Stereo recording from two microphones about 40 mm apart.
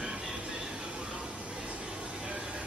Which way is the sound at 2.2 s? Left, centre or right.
Right.